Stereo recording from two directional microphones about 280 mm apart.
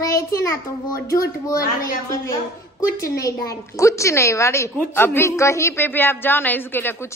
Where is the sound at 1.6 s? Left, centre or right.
Left.